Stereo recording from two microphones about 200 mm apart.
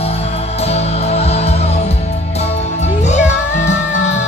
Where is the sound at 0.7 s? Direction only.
30° left (ahead or behind).